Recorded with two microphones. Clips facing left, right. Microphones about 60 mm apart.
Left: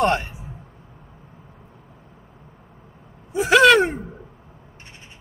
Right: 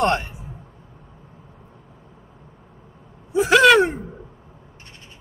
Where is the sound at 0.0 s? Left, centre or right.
Centre.